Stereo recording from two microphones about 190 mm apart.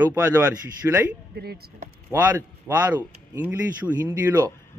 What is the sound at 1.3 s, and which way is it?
Speech, 55° right (ahead or behind).